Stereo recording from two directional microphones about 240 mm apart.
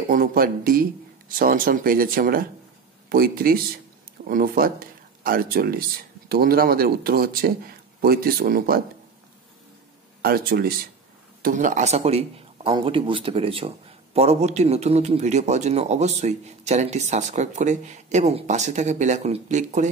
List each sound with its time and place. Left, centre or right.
0.1 s speech: right
10.2 s a man's voice: right